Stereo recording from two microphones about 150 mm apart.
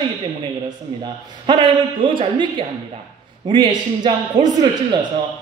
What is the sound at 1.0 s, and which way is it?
A man's voice, 35° right (ahead or behind).